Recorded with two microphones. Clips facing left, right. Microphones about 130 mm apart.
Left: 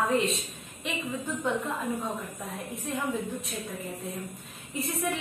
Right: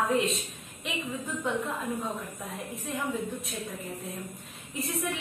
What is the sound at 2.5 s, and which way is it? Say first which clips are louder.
A woman's voice: left 2 dB; centre (ahead or behind).